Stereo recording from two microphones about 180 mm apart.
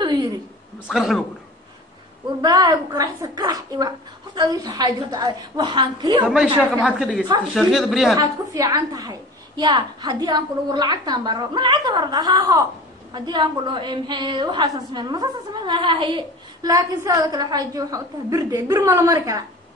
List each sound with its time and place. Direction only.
0.0 s a sound: 25° right (ahead or behind)
0.8 s speech: centre (ahead or behind)
2.4 s a woman's voice: 20° right (ahead or behind)
6.2 s speech: 5° right (ahead or behind)
8.2 s a woman's voice: 20° right (ahead or behind)